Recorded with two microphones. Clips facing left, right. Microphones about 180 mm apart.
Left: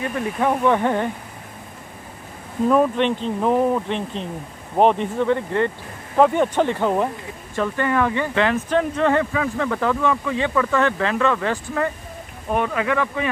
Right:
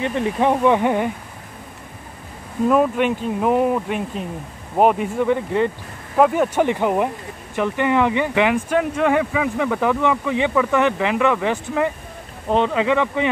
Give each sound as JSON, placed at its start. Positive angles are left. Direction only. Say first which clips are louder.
{"t": 0.0, "sound": "speech", "louder": "right 3 dB", "side_deg": -25}
{"t": 2.7, "sound": "speech", "louder": "even", "side_deg": -5}